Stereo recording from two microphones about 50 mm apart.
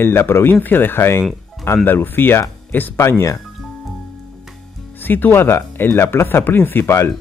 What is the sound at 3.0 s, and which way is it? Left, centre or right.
Speech, left.